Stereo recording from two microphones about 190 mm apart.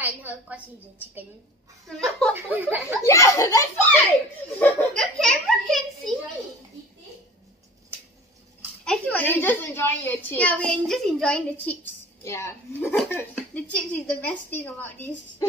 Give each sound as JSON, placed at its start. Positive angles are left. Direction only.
{"t": 0.0, "sound": "a woman's voice", "side_deg": -10}
{"t": 1.9, "sound": "a child's voice", "side_deg": 5}
{"t": 2.3, "sound": "speech", "side_deg": -10}
{"t": 3.0, "sound": "a woman's voice", "side_deg": 15}
{"t": 8.8, "sound": "a woman's voice", "side_deg": 5}